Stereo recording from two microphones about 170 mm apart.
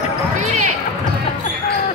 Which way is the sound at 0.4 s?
40° right (ahead or behind).